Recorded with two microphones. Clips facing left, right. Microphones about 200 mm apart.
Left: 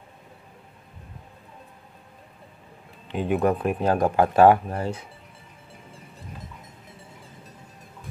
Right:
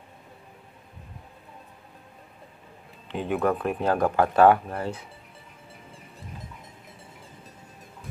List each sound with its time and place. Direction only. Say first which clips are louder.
3.1 s speech: left 3 dB; 15° left (ahead or behind)